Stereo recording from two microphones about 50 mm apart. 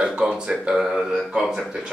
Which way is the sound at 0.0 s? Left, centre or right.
Centre.